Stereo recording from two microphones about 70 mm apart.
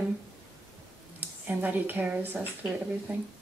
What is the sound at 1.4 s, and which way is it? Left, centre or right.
Speech, right.